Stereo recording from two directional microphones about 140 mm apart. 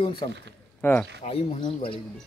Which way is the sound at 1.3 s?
40° left (ahead or behind).